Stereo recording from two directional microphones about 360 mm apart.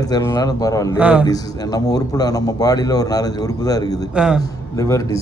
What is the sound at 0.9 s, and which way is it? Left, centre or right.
Speech, centre.